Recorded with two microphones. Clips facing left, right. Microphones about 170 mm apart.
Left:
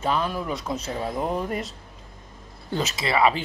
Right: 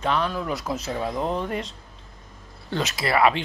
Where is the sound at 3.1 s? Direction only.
Centre (ahead or behind).